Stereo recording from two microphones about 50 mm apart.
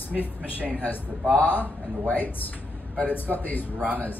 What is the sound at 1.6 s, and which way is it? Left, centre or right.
Speech, left.